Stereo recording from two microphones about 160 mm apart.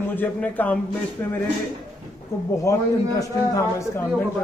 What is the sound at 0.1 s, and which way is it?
Speech, 10° left (ahead or behind).